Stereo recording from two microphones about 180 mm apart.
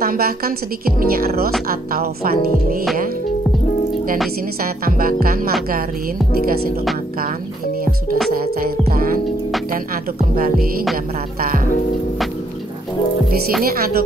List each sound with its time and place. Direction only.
0.0 s a woman's voice: 55° right (ahead or behind)
4.6 s a woman's voice: 55° right (ahead or behind)
8.4 s music: 55° right (ahead or behind)
13.7 s a woman's voice: 55° right (ahead or behind)